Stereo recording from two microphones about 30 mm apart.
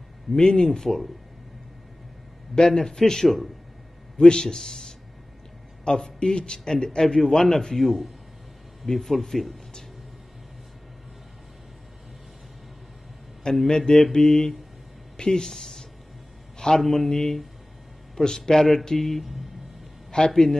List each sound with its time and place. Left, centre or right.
0.4 s speech: left
0.7 s speech: centre
2.5 s a man's voice: left
4.2 s a man's voice: left
7.7 s speech: centre
13.7 s a man's voice: left
16.5 s a sound: centre
16.8 s speech: centre
17.1 s speech: centre
20.1 s a man's voice: left